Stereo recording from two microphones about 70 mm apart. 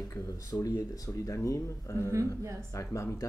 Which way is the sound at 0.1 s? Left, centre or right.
Left.